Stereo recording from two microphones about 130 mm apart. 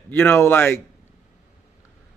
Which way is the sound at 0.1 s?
20° left (ahead or behind).